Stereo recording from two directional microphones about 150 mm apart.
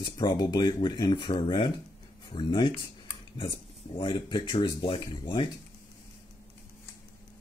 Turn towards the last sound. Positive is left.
turn(degrees=35)  # may be behind; listen again after turning